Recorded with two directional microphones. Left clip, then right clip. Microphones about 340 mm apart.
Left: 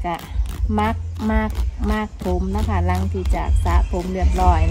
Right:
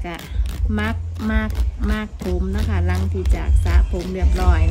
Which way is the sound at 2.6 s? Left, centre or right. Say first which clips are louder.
Left 4 dB; centre.